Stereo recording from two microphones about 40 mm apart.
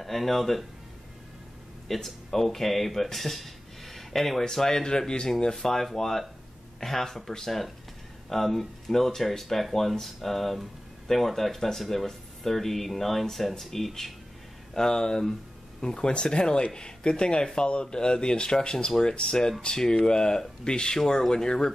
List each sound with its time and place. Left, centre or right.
0.0 s speech: centre
1.9 s speech: centre